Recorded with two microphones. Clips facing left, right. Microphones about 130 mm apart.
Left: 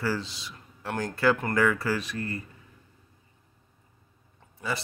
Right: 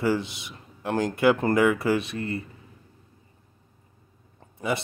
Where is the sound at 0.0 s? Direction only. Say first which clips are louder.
Right 5 dB; 20° right (ahead or behind).